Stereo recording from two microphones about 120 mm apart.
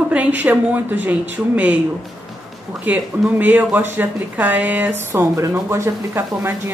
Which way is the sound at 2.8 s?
10° right (ahead or behind).